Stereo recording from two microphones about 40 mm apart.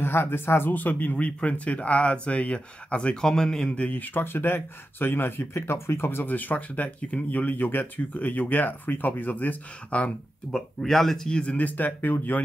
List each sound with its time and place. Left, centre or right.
0.0 s speech: left
0.7 s speech: left
3.2 s speech: centre
3.6 s speech: left
3.9 s speech: left
4.2 s speech: left
6.2 s speech: left
9.8 s speech: left
10.5 s speech: centre
11.2 s speech: left
11.5 s speech: left